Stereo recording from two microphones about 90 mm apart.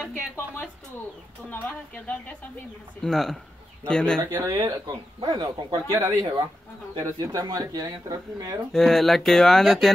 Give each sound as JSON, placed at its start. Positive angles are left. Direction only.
{"t": 1.5, "sound": "speech", "side_deg": 20}
{"t": 3.0, "sound": "speech", "side_deg": 5}
{"t": 4.2, "sound": "speech", "side_deg": -30}
{"t": 5.2, "sound": "speech", "side_deg": -55}
{"t": 5.9, "sound": "speech", "side_deg": -30}
{"t": 7.0, "sound": "speech", "side_deg": -45}
{"t": 8.7, "sound": "speech", "side_deg": 5}